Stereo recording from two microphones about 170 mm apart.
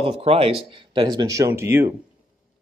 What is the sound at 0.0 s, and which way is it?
Speech, 35° right (ahead or behind).